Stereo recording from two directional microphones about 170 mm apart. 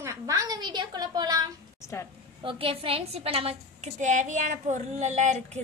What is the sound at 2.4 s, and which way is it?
A woman's voice, 30° right (ahead or behind).